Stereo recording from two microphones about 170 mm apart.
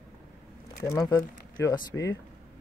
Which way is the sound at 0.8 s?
20° left (ahead or behind).